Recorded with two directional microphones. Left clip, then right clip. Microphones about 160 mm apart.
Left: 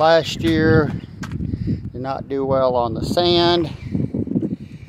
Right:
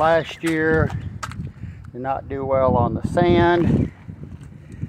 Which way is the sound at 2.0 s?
25° left (ahead or behind).